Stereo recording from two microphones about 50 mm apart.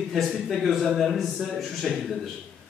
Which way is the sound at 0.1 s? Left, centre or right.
Centre.